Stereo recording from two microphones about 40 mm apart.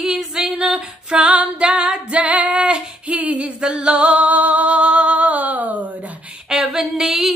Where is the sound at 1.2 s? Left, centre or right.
Right.